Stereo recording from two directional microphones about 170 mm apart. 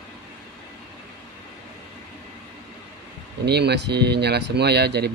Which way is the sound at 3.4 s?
75° right (ahead or behind).